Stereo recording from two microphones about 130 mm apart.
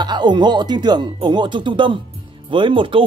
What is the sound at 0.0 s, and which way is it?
Speech, 35° right (ahead or behind).